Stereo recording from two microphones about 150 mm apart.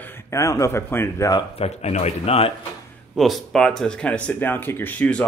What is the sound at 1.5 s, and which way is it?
A man's voice, 45° left (ahead or behind).